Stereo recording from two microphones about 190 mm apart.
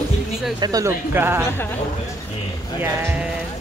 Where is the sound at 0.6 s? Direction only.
20° right (ahead or behind).